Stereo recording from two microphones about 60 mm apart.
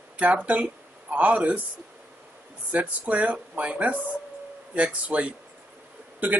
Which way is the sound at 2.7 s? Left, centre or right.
Right.